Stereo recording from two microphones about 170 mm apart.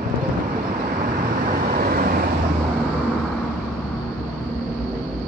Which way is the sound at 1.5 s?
55° right (ahead or behind).